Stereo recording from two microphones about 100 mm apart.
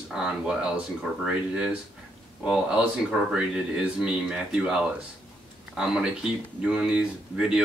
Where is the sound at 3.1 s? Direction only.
5° right (ahead or behind).